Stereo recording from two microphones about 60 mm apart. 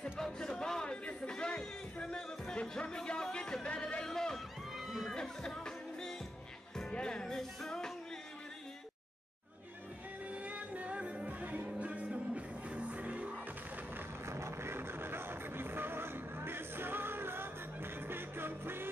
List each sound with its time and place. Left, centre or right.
0.0 s a sound: centre
4.8 s crowd: centre
5.1 s music: centre
10.3 s music: right
14.2 s music: right